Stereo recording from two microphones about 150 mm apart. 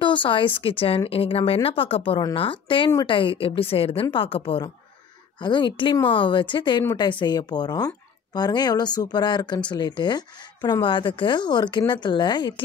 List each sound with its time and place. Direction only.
0.0 s speech: 35° left (ahead or behind)